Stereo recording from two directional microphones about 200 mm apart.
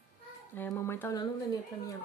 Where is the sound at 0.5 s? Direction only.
10° left (ahead or behind).